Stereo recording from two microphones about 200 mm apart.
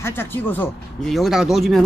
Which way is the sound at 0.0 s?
10° left (ahead or behind).